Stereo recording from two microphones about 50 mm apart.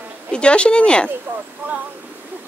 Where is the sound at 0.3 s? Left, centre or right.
Left.